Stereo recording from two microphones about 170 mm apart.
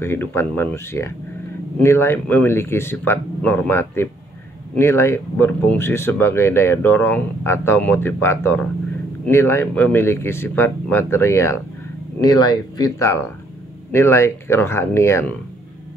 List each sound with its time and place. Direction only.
0.0 s speech: 15° left (ahead or behind)